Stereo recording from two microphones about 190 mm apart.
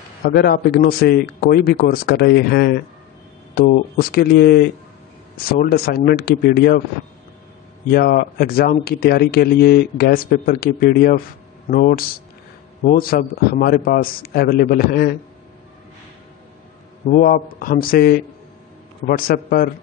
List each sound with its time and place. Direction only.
0.2 s a man's voice: 55° left (ahead or behind)
7.9 s speech: 50° left (ahead or behind)
17.1 s speech: 50° left (ahead or behind)